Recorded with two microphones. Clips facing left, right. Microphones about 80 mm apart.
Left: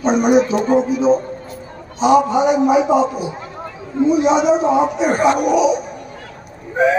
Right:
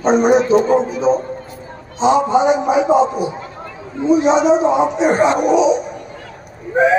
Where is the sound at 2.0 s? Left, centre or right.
Right.